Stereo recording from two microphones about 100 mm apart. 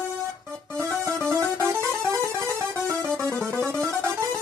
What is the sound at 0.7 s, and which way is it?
Speech, 25° right (ahead or behind).